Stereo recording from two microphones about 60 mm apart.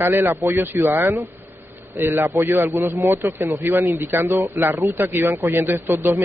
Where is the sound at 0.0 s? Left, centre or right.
Right.